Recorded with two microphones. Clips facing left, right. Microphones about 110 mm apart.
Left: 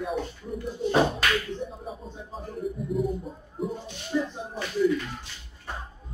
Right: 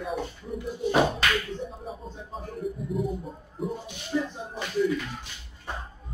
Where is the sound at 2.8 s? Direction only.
Centre (ahead or behind).